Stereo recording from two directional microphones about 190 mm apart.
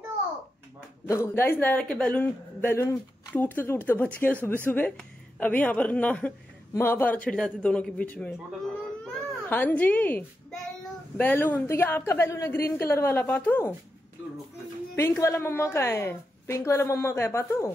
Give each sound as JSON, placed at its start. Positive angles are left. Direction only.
{"t": 1.0, "sound": "a woman's voice", "side_deg": 15}
{"t": 9.0, "sound": "baby cry", "side_deg": 10}
{"t": 11.1, "sound": "a woman's voice", "side_deg": 10}
{"t": 15.0, "sound": "a woman's voice", "side_deg": 15}